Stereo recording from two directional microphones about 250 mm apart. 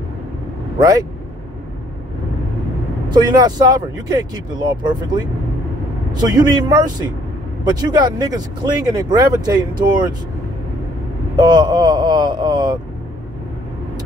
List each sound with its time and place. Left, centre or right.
0.7 s speech: centre
3.1 s speech: centre
6.1 s speech: centre
11.3 s speech: centre